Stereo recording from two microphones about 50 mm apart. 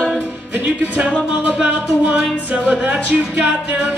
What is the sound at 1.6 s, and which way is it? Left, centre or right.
Speech, centre.